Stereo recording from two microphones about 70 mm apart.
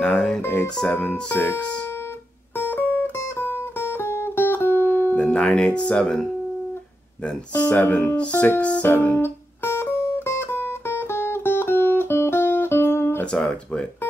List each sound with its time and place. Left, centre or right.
0.0 s music: centre
0.9 s speech: left
2.5 s music: left; by 6.2 s centre
7.2 s speech: left
8.2 s speech: centre
8.5 s music: centre
8.8 s music: left